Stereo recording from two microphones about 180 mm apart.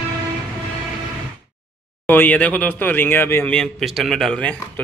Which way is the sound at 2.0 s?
10° left (ahead or behind).